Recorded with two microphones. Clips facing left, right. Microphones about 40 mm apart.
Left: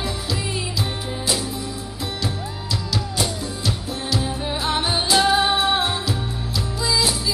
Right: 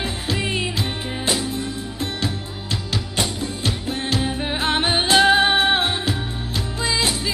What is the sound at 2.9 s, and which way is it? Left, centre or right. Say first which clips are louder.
Music: even; right.